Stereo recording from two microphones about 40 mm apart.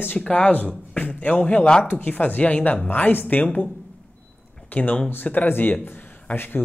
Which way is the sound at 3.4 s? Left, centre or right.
Left.